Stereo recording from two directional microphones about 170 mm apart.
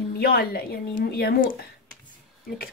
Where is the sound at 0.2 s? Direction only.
65° left (ahead or behind).